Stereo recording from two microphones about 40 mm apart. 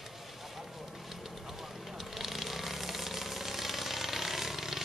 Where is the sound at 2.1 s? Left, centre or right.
Centre.